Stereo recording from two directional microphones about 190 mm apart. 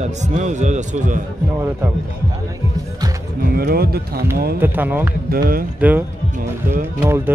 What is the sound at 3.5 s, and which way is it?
Speech, 55° right (ahead or behind).